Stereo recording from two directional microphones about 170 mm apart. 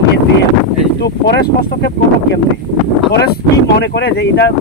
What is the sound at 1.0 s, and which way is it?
Speech, 70° left (ahead or behind).